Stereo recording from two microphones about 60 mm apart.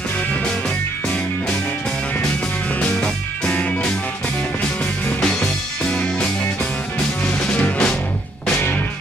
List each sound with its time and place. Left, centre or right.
2.8 s music: centre
5.2 s music: centre
7.2 s music: left